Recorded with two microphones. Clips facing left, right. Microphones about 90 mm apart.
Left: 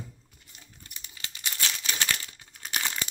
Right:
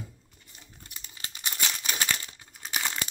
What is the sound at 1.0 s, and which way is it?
Crumpling, 30° right (ahead or behind).